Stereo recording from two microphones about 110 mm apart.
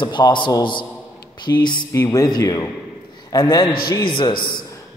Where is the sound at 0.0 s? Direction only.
45° left (ahead or behind).